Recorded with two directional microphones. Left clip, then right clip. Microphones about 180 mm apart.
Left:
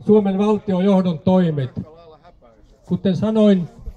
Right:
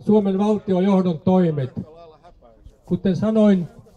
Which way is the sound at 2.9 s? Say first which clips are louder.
Left 1 dB; 15° left (ahead or behind).